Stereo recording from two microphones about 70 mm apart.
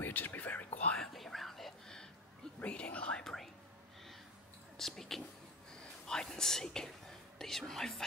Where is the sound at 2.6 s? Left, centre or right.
Centre.